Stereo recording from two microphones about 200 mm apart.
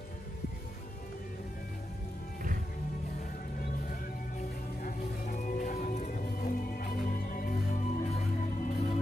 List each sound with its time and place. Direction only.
4.8 s music: 40° left (ahead or behind)